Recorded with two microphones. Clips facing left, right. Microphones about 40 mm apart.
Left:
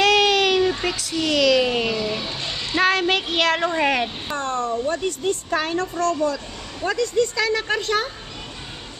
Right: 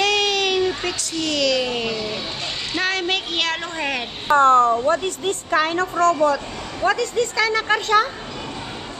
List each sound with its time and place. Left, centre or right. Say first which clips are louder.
0.0 s baby cry: left 3 dB; centre
2.7 s a sound: left 4 dB; centre
4.3 s speech: right 16 dB; right
4.8 s a woman's voice: right 2 dB; right
6.2 s speech: right 5 dB; right
6.9 s a woman's voice: even; centre